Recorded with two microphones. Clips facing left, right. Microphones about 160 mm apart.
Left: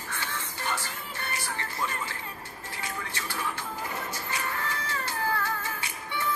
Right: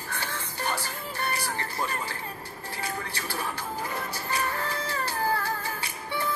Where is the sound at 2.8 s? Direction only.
35° right (ahead or behind).